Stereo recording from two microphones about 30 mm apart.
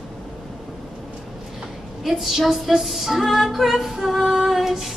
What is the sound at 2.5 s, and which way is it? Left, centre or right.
Female singing, centre.